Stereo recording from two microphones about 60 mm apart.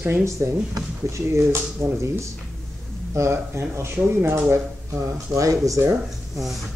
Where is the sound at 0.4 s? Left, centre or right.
Right.